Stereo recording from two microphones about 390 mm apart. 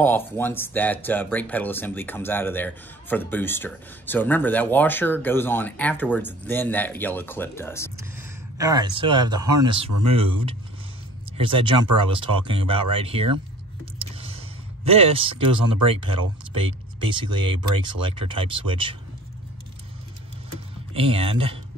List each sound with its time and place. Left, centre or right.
0.0 s speech: centre
8.2 s speech: centre
14.9 s speech: centre
20.9 s speech: centre